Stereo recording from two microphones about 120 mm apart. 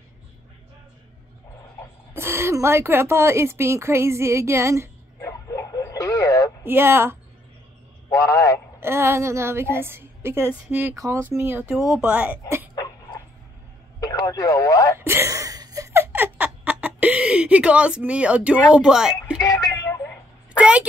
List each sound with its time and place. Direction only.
2.1 s a woman's voice: 20° right (ahead or behind)
5.2 s radio: 25° left (ahead or behind)
6.6 s a woman's voice: 20° right (ahead or behind)
8.1 s a man's voice: 25° left (ahead or behind)
8.7 s a woman's voice: 20° right (ahead or behind)
12.7 s dog: 35° left (ahead or behind)
13.9 s speech: 30° left (ahead or behind)
15.0 s laughter: 20° right (ahead or behind); by 19.1 s 5° right (ahead or behind)
19.4 s a sound: 30° left (ahead or behind)
20.5 s a sound: 10° right (ahead or behind)